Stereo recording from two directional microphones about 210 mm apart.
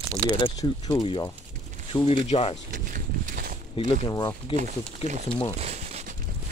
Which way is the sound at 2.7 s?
40° right (ahead or behind).